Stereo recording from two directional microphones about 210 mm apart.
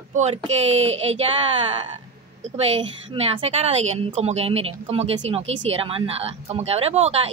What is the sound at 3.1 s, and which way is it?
A woman's voice, 25° right (ahead or behind).